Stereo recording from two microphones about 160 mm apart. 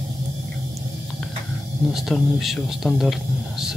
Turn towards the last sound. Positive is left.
turn(degrees=0)  # may be behind; listen again after turning